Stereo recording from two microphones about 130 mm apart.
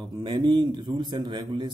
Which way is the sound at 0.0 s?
35° right (ahead or behind).